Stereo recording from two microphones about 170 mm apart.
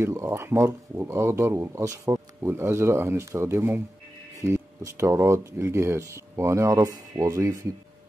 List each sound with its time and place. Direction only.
0.0 s speech: 15° right (ahead or behind)